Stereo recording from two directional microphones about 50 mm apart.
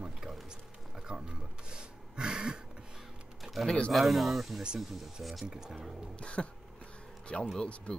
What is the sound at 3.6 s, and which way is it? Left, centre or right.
Speech, left.